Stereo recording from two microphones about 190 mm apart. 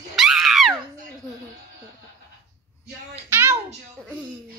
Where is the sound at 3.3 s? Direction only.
10° right (ahead or behind).